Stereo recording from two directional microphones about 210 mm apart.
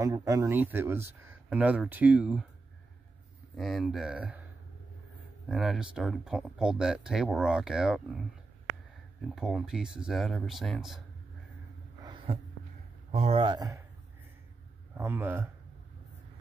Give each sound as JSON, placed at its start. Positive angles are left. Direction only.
{"t": 0.0, "sound": "speech", "side_deg": -15}
{"t": 3.5, "sound": "speech", "side_deg": 0}
{"t": 5.5, "sound": "speech", "side_deg": 0}
{"t": 9.3, "sound": "speech", "side_deg": 0}
{"t": 12.0, "sound": "a sound", "side_deg": -20}
{"t": 13.1, "sound": "speech", "side_deg": -30}
{"t": 15.0, "sound": "speech", "side_deg": -10}